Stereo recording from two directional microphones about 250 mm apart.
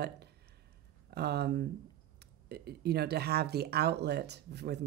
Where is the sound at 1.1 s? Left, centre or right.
Right.